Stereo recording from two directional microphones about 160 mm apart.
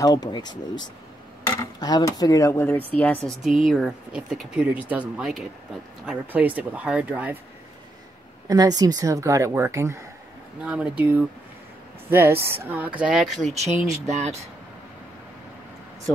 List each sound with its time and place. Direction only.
0.0 s speech: 25° left (ahead or behind); by 3.2 s 10° left (ahead or behind)
3.3 s speech: centre (ahead or behind)
8.5 s speech: 25° right (ahead or behind)
10.6 s speech: 10° right (ahead or behind)
14.0 s speech: 45° right (ahead or behind)